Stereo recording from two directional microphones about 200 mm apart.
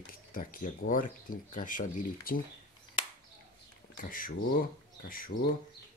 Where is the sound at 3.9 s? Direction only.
45° left (ahead or behind).